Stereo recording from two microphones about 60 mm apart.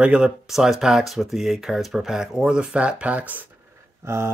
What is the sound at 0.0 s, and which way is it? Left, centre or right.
Speech, centre.